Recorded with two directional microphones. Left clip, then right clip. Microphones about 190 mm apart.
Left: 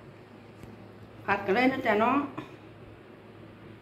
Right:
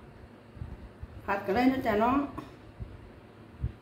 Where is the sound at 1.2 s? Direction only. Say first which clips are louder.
Left 2 dB; centre (ahead or behind).